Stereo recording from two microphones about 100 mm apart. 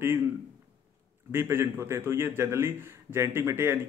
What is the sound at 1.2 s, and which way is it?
A man's voice, 25° right (ahead or behind).